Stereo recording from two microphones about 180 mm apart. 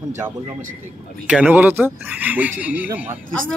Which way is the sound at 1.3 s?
5° right (ahead or behind).